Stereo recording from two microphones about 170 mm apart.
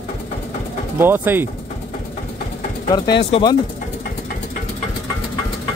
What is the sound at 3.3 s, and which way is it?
Speech, 25° left (ahead or behind).